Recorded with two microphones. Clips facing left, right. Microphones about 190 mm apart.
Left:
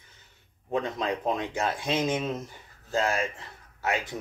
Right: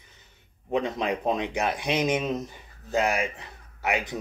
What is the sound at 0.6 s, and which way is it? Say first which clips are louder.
Speech: right 2 dB; 20° right (ahead or behind).